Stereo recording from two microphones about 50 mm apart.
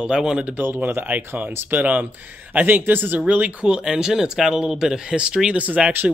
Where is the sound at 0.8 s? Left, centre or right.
Right.